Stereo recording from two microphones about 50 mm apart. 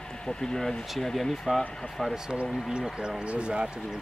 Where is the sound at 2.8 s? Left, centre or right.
Centre.